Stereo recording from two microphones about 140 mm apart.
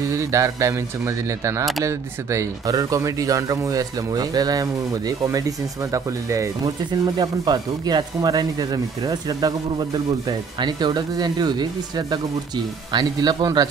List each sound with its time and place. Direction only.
0.1 s speech: 20° right (ahead or behind)